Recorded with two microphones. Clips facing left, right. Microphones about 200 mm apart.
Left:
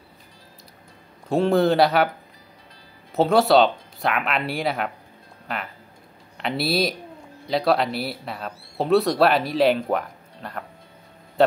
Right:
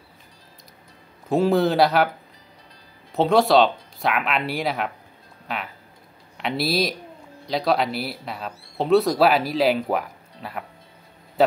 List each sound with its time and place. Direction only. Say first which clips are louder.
1.3 s speech: even; centre (ahead or behind)
3.1 s speech: even; centre (ahead or behind)
6.3 s a man's voice: even; centre (ahead or behind)